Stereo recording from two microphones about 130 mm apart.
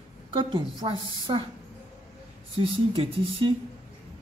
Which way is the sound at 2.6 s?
45° right (ahead or behind).